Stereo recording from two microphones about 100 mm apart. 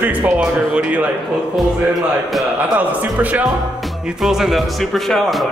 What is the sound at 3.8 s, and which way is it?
Speech, 5° right (ahead or behind).